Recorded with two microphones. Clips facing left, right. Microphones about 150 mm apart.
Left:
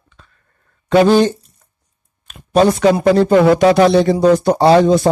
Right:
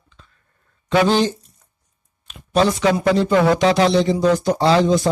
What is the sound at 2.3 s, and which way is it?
Speech, 50° left (ahead or behind).